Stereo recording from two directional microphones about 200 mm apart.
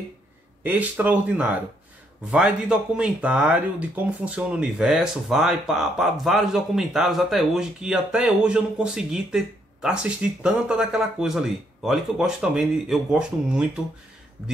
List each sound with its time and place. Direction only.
0.7 s speech: 10° right (ahead or behind)